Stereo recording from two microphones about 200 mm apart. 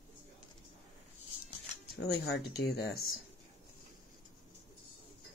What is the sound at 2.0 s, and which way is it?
Speech, 55° left (ahead or behind).